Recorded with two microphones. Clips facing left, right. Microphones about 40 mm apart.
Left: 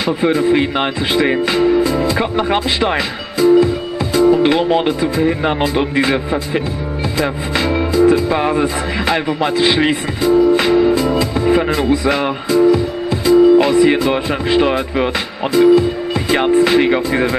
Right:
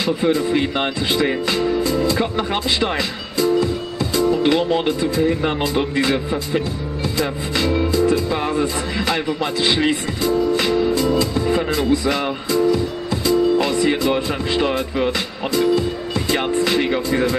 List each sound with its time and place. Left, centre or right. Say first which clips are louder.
0.0 s speech: left 4 dB; left
4.4 s music: left 4 dB; left